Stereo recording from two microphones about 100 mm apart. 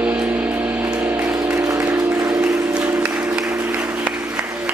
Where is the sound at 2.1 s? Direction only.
30° right (ahead or behind).